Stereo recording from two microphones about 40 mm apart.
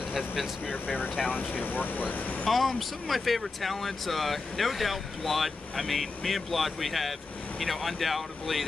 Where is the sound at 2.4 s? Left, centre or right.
Centre.